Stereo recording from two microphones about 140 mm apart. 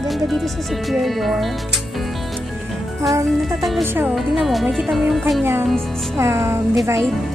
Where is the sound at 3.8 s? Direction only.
15° right (ahead or behind).